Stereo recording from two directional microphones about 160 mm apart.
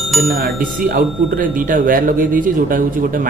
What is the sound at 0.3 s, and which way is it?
Speech, 60° right (ahead or behind).